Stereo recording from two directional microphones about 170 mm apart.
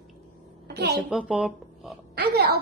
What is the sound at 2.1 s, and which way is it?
Speech, 70° right (ahead or behind).